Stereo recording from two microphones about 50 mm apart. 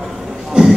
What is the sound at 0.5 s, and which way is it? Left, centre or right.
Music, centre.